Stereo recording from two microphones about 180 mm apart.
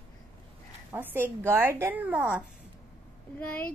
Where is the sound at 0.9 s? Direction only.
10° right (ahead or behind).